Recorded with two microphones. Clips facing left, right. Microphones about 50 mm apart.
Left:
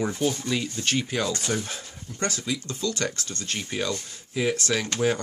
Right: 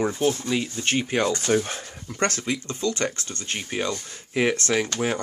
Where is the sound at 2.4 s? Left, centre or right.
Right.